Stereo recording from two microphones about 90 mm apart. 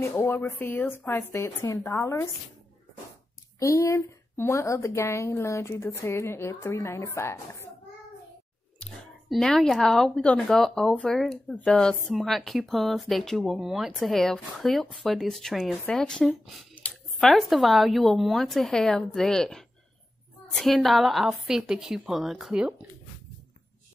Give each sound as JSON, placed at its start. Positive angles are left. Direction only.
{"t": 0.0, "sound": "speech", "side_deg": 25}
{"t": 3.5, "sound": "speech", "side_deg": 35}
{"t": 9.3, "sound": "a woman's voice", "side_deg": 0}
{"t": 16.8, "sound": "a sound", "side_deg": 15}
{"t": 17.2, "sound": "a woman's voice", "side_deg": 0}